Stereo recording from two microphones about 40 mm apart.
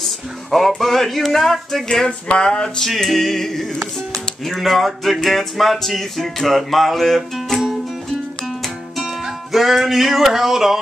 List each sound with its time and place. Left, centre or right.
0.0 s music: centre
2.0 s a sound: left
2.8 s music: centre
8.9 s music: centre